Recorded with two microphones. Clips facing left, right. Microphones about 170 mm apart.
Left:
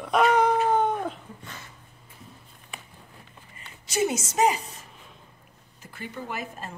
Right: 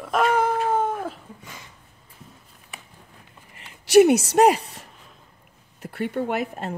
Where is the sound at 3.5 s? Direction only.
75° right (ahead or behind).